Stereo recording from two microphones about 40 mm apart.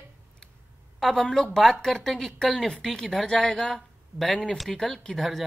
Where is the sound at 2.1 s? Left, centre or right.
Centre.